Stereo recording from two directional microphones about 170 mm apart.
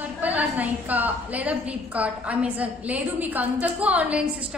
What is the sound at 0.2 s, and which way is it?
A woman's voice, 10° right (ahead or behind).